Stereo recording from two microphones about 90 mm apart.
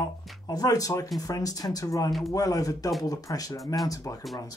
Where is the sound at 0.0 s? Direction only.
45° left (ahead or behind).